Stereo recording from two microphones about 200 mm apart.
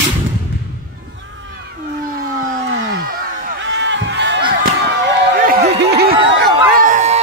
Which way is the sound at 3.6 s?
65° right (ahead or behind).